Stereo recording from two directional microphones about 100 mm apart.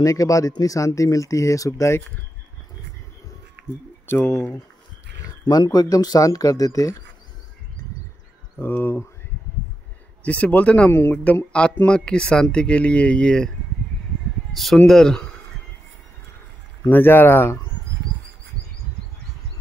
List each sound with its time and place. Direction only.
0.0 s speech: 35° left (ahead or behind)
4.1 s speech: 25° left (ahead or behind)
5.5 s speech: 40° left (ahead or behind)
8.5 s speech: 20° left (ahead or behind)
10.2 s speech: 15° left (ahead or behind)
10.9 s speech: 25° left (ahead or behind)
11.5 s speech: 10° left (ahead or behind)
14.5 s speech: centre (ahead or behind)
16.9 s speech: 20° left (ahead or behind)